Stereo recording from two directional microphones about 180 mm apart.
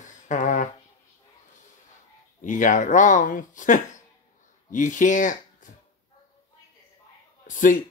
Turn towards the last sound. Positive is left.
turn(degrees=45)  # may be behind; listen again after turning